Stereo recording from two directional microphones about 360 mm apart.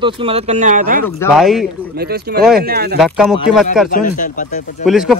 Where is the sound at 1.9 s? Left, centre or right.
Right.